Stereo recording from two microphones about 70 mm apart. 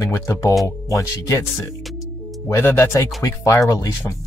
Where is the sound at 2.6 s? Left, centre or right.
Left.